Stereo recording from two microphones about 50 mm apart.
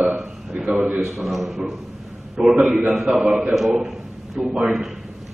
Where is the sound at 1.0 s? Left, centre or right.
Centre.